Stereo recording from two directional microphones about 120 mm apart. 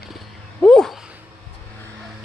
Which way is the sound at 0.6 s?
5° left (ahead or behind).